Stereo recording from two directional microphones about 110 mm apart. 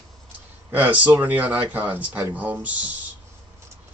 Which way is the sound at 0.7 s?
15° right (ahead or behind).